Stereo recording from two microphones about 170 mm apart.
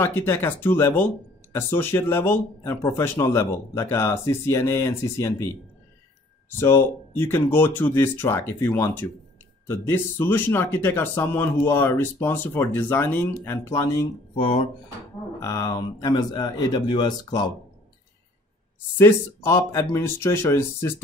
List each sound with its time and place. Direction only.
0.0 s speech: 15° left (ahead or behind)
6.6 s speech: 15° left (ahead or behind)
14.3 s speech: 35° left (ahead or behind)
15.4 s speech: 20° left (ahead or behind)
18.9 s speech: 15° left (ahead or behind)